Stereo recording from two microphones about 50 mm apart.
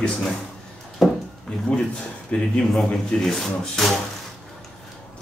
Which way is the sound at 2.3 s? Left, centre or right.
Left.